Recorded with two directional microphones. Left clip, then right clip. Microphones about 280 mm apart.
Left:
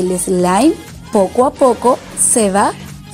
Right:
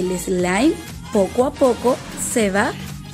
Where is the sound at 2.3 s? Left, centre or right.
Centre.